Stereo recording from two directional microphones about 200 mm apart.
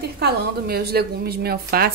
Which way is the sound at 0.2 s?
50° right (ahead or behind).